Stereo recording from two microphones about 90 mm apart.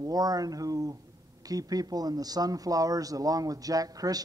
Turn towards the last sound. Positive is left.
turn(degrees=-45)  # may be behind; listen again after turning